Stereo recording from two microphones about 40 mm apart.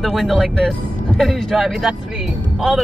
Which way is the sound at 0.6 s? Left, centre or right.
Centre.